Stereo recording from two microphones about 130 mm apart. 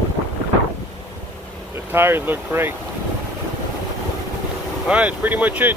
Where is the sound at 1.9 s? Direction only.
15° right (ahead or behind).